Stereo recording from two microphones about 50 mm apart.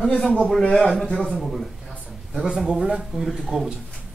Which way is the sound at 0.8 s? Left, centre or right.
Centre.